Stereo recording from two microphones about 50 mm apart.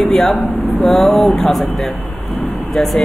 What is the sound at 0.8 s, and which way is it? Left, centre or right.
Speech, centre.